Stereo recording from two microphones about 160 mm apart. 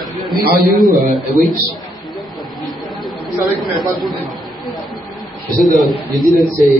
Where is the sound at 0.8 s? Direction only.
25° right (ahead or behind).